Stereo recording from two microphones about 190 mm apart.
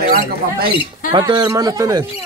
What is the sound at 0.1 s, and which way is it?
Speech, 55° right (ahead or behind).